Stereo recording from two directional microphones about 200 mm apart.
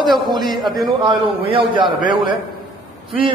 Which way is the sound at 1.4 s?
25° right (ahead or behind).